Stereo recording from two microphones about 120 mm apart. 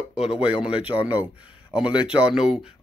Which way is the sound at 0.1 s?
5° right (ahead or behind).